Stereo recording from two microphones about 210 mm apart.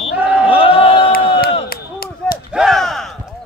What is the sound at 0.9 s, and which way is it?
Crowd, 50° left (ahead or behind).